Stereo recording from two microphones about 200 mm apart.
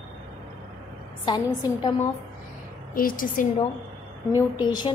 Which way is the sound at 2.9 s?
45° left (ahead or behind).